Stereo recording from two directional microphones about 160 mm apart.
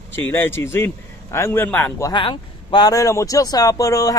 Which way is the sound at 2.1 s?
30° left (ahead or behind).